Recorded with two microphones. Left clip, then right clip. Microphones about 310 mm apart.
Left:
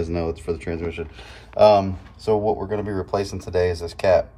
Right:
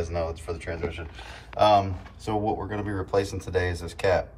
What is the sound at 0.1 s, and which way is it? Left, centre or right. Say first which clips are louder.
Speech: left 5 dB; centre.